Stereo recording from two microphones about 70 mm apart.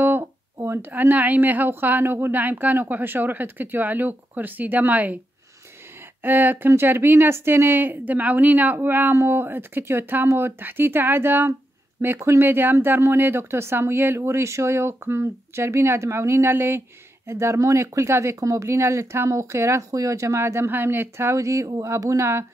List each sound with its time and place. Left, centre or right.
0.0 s a sound: right
0.8 s speech: right
6.2 s a woman's voice: right